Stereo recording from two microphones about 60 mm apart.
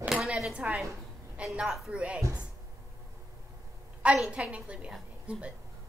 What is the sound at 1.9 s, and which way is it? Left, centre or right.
Speech, right.